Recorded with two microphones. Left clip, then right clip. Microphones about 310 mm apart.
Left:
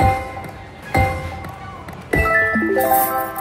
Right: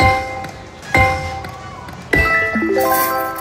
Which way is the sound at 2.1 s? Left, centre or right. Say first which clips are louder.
Right 2 dB; centre.